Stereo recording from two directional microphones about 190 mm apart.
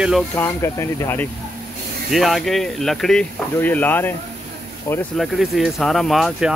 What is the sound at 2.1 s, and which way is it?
Speech, centre (ahead or behind).